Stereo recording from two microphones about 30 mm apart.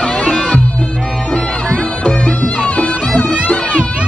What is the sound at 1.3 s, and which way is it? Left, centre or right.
Bagpipes, left.